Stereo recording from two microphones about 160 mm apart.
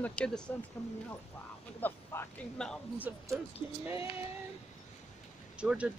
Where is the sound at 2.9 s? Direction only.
10° right (ahead or behind).